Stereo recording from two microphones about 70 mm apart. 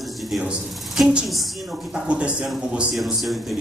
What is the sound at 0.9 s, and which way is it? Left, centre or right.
Speech, centre.